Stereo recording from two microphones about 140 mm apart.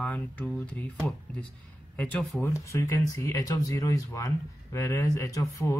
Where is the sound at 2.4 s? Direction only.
20° left (ahead or behind).